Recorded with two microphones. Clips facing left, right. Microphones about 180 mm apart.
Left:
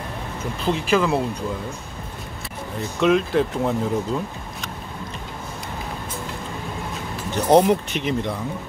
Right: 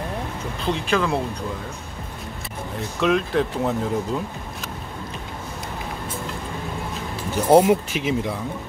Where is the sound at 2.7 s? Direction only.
Centre (ahead or behind).